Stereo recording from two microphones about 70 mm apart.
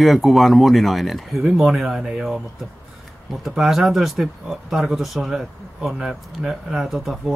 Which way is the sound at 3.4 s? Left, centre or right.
Centre.